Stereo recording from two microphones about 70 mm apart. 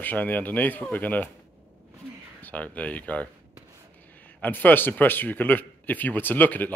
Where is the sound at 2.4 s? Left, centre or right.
Left.